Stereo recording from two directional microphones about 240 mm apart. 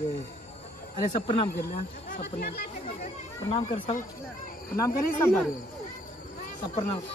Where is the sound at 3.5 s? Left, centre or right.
Left.